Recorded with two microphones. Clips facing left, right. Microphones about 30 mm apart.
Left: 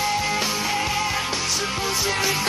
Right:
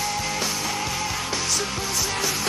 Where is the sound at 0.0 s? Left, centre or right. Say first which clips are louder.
Left 3 dB; centre.